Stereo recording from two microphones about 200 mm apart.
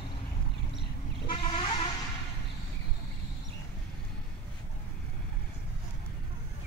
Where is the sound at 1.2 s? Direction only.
25° left (ahead or behind).